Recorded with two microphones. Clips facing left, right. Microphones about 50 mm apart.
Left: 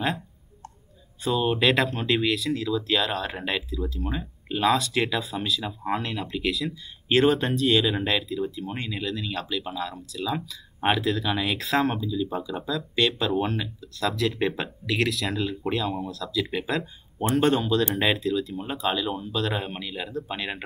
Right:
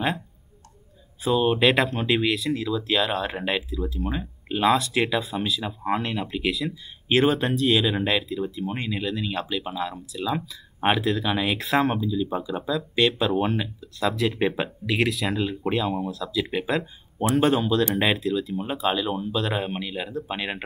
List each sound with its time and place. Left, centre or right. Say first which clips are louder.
1.2 s speech: right 3 dB; centre